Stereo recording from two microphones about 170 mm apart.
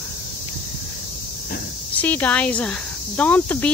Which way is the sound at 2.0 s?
10° left (ahead or behind).